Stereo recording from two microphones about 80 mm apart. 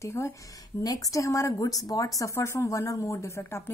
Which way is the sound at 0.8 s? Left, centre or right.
Left.